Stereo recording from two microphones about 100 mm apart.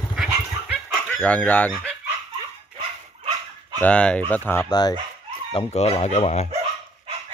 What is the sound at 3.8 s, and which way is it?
Speech, 10° left (ahead or behind).